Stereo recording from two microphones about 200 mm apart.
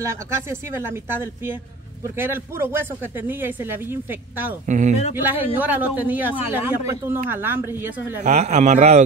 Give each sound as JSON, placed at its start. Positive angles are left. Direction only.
{"t": 0.0, "sound": "speech", "side_deg": -15}
{"t": 4.6, "sound": "a man's voice", "side_deg": -35}
{"t": 5.1, "sound": "speech", "side_deg": -10}
{"t": 8.2, "sound": "a man's voice", "side_deg": -35}